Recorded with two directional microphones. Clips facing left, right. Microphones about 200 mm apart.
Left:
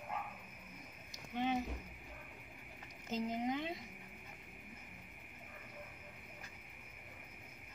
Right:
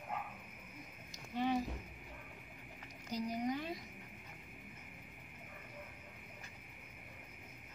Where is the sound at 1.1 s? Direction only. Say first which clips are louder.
Right 1 dB; 20° left (ahead or behind).